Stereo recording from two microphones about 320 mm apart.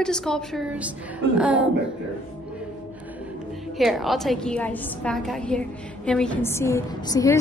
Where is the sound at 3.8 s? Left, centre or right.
Centre.